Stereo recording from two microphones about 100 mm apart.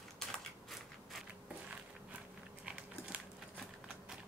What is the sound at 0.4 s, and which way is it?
Mechanisms, centre (ahead or behind).